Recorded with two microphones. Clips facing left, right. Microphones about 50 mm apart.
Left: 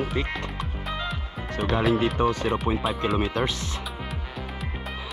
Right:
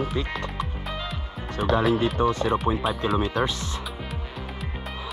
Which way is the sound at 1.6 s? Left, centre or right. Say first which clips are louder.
Right 3 dB; centre.